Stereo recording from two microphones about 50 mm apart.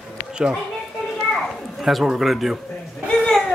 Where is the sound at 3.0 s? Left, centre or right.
Left.